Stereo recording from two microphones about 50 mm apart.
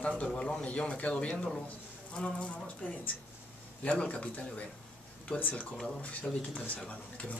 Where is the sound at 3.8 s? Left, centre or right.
Left.